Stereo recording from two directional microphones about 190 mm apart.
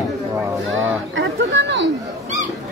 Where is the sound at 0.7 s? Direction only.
80° right.